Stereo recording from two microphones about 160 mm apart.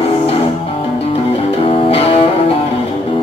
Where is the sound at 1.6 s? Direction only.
35° left (ahead or behind).